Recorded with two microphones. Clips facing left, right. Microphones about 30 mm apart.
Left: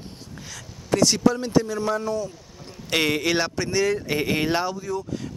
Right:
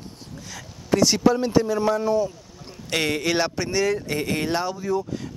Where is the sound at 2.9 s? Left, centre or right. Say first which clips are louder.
Left 1 dB; centre.